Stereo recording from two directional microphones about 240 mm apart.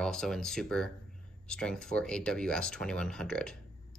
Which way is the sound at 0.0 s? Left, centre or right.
Centre.